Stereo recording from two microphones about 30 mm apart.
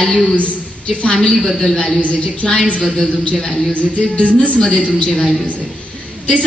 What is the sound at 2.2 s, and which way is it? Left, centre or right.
Speech, left.